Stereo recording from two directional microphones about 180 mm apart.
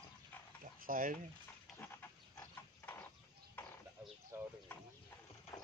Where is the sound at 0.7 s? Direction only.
50° right (ahead or behind).